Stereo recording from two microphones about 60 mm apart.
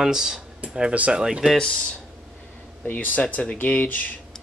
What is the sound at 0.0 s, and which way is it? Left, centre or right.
Speech, centre.